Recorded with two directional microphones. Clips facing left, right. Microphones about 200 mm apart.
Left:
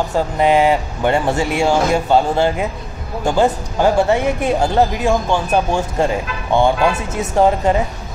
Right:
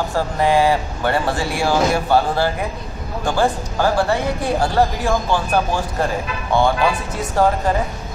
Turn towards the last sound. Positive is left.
turn(degrees=20)  # may be behind; listen again after turning